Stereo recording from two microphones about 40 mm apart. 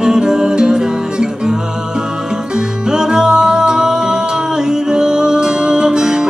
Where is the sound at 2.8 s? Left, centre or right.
Centre.